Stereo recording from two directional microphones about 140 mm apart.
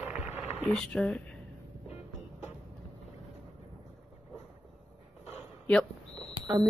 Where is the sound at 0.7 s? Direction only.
5° left (ahead or behind).